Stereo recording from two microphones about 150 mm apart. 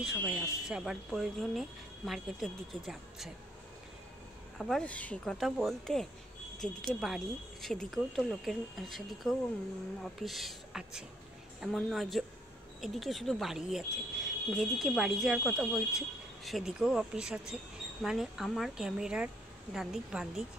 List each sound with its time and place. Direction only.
0.3 s speech: 5° right (ahead or behind)
4.6 s speech: centre (ahead or behind)